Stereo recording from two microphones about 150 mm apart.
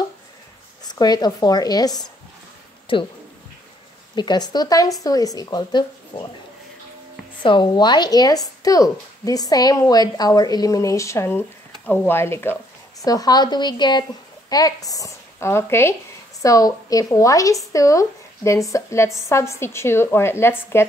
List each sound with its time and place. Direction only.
0.8 s a woman's voice: 25° left (ahead or behind)
4.1 s a woman's voice: 30° left (ahead or behind)
7.4 s a woman's voice: 30° left (ahead or behind)